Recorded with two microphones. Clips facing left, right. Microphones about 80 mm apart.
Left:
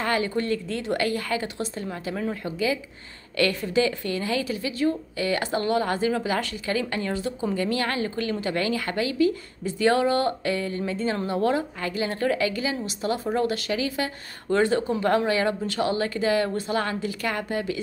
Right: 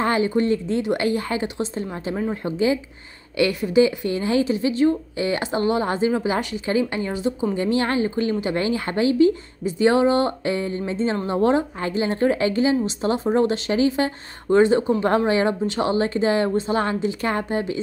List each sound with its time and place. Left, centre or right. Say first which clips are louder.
0.0 s a woman's voice: right 5 dB; right